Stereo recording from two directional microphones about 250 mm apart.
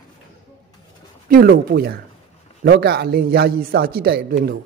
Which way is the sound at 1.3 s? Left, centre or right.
Right.